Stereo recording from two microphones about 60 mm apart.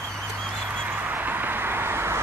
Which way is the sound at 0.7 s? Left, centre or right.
Right.